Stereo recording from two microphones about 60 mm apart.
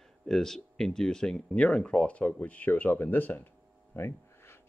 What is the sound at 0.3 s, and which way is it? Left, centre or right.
Speech, centre.